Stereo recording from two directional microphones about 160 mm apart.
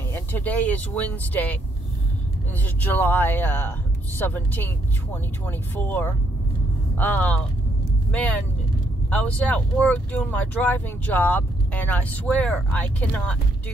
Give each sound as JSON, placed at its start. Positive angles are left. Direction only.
{"t": 0.1, "sound": "speech", "side_deg": 10}
{"t": 2.6, "sound": "speech", "side_deg": 10}